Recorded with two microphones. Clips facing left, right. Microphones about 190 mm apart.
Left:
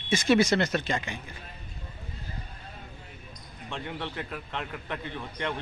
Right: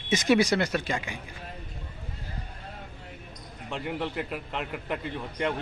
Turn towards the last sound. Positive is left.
turn(degrees=-5)  # may be behind; listen again after turning